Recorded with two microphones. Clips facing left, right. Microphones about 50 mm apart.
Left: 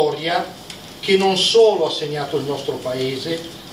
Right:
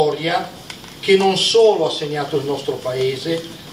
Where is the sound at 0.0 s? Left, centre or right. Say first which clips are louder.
Right 1 dB; centre.